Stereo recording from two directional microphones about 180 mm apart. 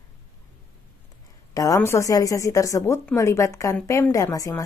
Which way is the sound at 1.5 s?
20° left (ahead or behind).